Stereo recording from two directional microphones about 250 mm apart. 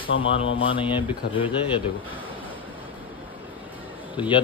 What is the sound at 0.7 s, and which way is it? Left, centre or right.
Speech, centre.